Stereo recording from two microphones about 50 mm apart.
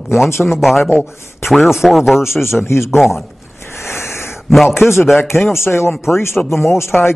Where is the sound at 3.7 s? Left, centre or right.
Left.